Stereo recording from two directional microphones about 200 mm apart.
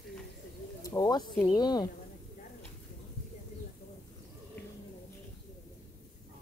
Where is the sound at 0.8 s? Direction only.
15° left (ahead or behind).